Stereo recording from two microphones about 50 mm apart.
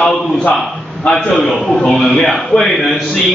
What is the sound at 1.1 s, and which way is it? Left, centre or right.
A man's voice, centre.